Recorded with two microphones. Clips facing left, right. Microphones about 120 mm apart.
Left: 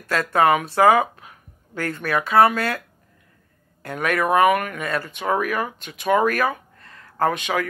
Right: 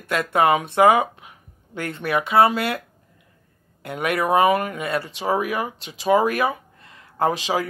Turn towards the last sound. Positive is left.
turn(degrees=-30)  # may be behind; listen again after turning